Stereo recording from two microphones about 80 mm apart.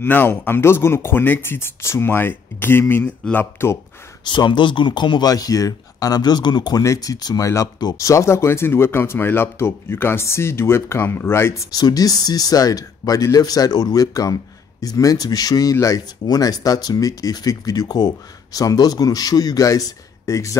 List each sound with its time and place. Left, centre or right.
0.0 s speech: left
3.0 s speech: centre
4.3 s speech: left
5.3 s speech: left
6.8 s speech: left
7.4 s speech: left
11.7 s speech: left